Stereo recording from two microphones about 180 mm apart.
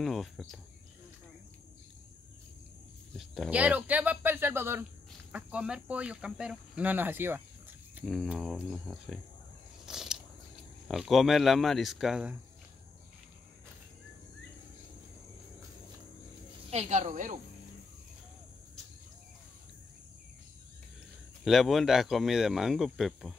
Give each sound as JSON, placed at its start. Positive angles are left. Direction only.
{"t": 0.0, "sound": "speech", "side_deg": 0}
{"t": 3.1, "sound": "speech", "side_deg": 0}
{"t": 8.0, "sound": "speech", "side_deg": 0}
{"t": 9.8, "sound": "a sound", "side_deg": 0}
{"t": 10.9, "sound": "speech", "side_deg": 0}
{"t": 16.7, "sound": "speech", "side_deg": -40}
{"t": 21.5, "sound": "speech", "side_deg": 0}